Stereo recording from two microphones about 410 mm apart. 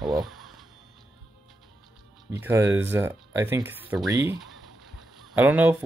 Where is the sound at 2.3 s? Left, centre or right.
Centre.